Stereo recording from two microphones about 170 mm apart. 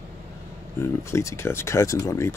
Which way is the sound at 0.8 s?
15° left (ahead or behind).